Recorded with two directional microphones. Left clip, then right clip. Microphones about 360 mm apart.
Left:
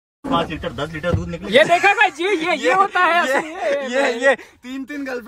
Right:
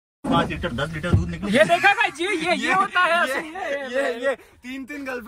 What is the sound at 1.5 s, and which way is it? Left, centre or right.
Speech, left.